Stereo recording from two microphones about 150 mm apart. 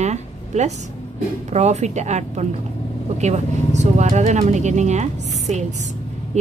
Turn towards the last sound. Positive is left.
turn(degrees=-50)  # may be behind; listen again after turning